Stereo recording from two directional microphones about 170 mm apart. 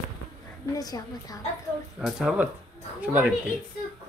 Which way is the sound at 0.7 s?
20° left (ahead or behind).